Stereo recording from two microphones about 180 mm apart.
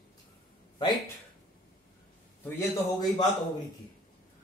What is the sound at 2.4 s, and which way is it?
Speech, 10° left (ahead or behind).